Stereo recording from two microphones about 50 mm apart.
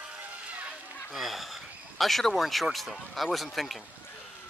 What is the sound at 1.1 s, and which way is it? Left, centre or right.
Speech, centre.